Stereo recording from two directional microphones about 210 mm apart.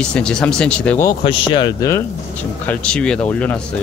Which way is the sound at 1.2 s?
25° left (ahead or behind).